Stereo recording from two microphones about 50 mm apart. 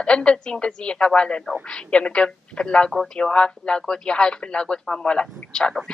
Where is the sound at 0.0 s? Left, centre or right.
Left.